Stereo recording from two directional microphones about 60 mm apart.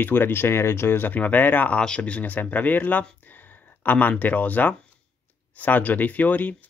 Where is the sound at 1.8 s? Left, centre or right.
Centre.